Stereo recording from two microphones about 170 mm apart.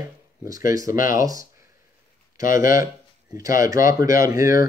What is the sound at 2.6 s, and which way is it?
Speech, 55° left (ahead or behind).